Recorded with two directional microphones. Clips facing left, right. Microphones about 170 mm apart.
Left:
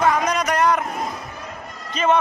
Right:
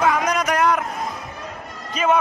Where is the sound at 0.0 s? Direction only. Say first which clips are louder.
Even; 5° right (ahead or behind).